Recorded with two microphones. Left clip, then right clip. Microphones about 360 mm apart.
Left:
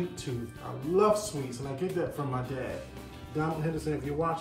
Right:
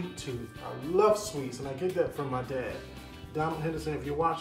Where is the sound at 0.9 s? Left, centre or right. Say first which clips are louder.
Right 1 dB; centre.